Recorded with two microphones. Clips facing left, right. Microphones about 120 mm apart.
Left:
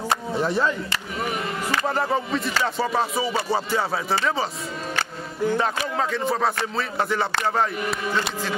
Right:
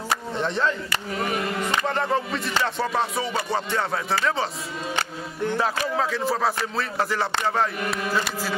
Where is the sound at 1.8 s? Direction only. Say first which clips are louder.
Left 2 dB; 5° left (ahead or behind).